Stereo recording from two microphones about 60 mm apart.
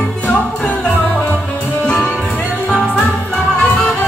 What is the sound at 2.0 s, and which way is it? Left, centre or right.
Music, centre.